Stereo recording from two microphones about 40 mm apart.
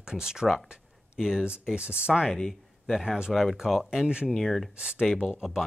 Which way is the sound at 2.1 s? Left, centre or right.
Centre.